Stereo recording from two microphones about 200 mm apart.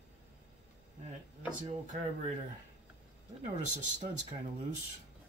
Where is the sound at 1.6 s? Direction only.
40° right (ahead or behind).